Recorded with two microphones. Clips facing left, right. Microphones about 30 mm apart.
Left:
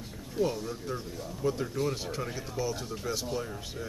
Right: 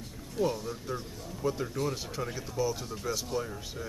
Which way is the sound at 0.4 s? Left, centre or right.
Centre.